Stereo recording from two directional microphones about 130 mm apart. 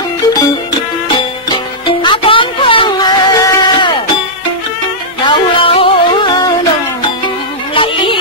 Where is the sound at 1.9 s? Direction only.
40° left (ahead or behind).